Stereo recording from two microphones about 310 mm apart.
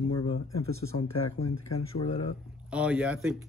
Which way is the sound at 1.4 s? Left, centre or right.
Left.